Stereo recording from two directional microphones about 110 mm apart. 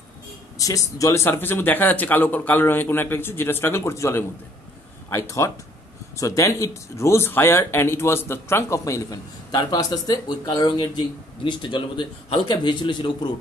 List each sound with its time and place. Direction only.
0.6 s speech: 30° left (ahead or behind)